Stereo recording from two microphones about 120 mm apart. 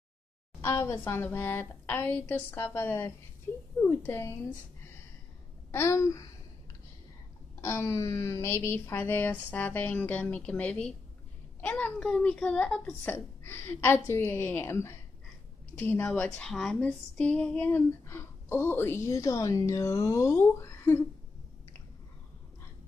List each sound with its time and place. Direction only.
0.6 s speech: 25° left (ahead or behind)
5.7 s speech: 20° left (ahead or behind)
7.6 s speech: 20° left (ahead or behind)